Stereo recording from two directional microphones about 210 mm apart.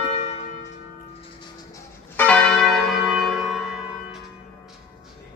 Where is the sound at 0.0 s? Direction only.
30° left (ahead or behind).